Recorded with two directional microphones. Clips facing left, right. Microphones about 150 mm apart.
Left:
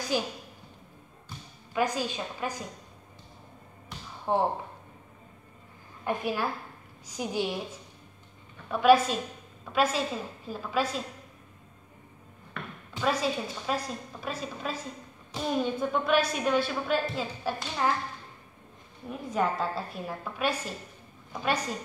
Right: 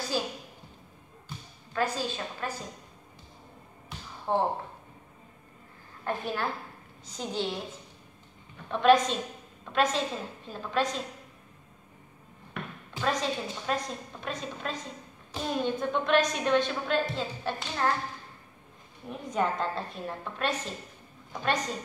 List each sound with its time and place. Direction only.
0.1 s a woman's voice: 15° left (ahead or behind)
1.7 s a woman's voice: 15° left (ahead or behind)
4.3 s a woman's voice: 10° left (ahead or behind)
6.0 s a woman's voice: 10° left (ahead or behind)
8.6 s a woman's voice: 5° left (ahead or behind)
13.0 s a woman's voice: 5° left (ahead or behind)
19.0 s a woman's voice: centre (ahead or behind)